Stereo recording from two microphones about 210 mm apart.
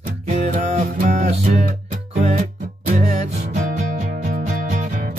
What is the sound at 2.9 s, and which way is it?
Music, 35° right (ahead or behind).